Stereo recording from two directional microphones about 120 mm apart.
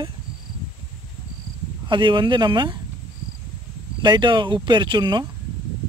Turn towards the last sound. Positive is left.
turn(degrees=-40)  # may be behind; listen again after turning